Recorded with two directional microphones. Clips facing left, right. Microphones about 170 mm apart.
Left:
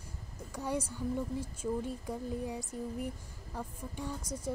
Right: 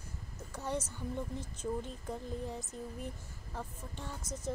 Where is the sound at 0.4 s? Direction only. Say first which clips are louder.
Left 2 dB; 10° left (ahead or behind).